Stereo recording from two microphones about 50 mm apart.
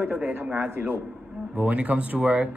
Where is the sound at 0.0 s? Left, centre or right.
Centre.